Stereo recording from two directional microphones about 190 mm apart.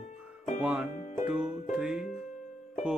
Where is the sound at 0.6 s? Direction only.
5° right (ahead or behind).